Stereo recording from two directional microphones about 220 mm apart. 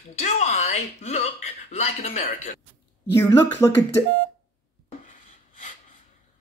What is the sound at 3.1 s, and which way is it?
Speech, 10° left (ahead or behind).